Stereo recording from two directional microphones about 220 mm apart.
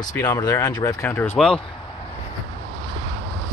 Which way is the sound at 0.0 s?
15° left (ahead or behind).